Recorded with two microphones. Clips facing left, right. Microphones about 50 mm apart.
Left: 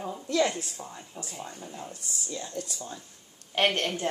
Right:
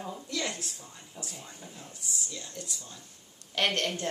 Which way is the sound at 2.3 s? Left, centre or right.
Left.